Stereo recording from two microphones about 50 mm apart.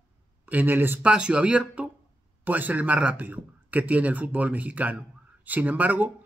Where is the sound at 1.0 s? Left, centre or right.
Right.